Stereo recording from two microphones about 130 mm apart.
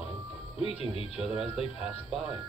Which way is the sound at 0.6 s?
50° left (ahead or behind).